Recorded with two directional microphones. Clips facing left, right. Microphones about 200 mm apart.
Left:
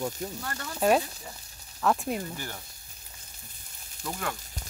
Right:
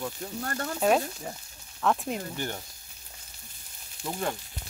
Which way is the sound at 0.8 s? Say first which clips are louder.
Left 1 dB; centre (ahead or behind).